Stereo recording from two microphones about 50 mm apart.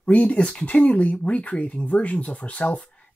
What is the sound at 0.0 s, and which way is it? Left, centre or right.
Speech, left.